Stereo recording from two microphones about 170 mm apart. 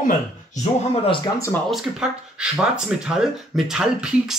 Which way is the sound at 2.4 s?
5° right (ahead or behind).